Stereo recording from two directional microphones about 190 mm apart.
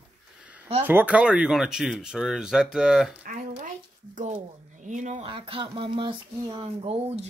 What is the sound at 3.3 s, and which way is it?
Speech, 45° right (ahead or behind).